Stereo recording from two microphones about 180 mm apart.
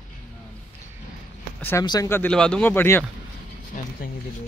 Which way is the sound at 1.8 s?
20° left (ahead or behind).